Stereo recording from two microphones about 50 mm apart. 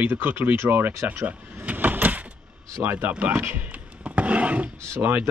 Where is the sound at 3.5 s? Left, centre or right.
Right.